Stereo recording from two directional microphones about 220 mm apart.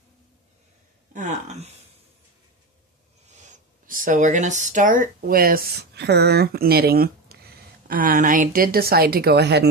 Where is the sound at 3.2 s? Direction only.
35° right (ahead or behind).